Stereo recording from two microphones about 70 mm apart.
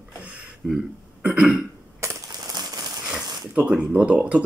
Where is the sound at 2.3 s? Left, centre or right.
Right.